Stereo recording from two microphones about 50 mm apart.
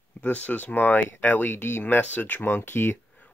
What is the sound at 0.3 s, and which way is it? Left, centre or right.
Speech, left.